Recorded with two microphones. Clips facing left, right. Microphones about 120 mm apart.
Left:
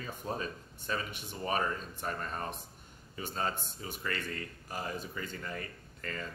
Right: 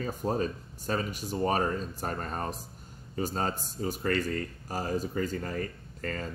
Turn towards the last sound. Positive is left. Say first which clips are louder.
# right 6 dB
turn(degrees=-40)  # may be behind; listen again after turning